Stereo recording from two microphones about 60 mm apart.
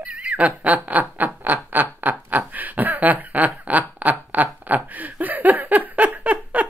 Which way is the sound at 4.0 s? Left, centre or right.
Right.